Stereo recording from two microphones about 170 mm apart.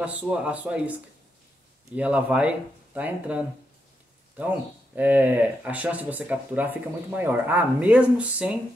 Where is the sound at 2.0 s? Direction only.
5° right (ahead or behind).